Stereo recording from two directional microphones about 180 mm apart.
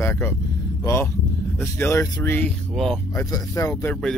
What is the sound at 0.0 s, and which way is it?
Speech, 10° left (ahead or behind).